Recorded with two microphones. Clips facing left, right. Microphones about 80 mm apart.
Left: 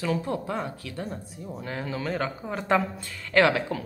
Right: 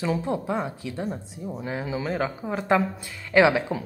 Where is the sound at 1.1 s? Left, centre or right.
Centre.